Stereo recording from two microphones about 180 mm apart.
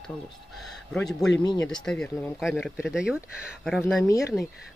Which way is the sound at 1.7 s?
5° left (ahead or behind).